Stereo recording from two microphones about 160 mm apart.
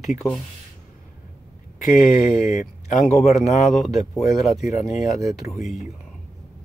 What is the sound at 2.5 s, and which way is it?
Speech, 55° left (ahead or behind).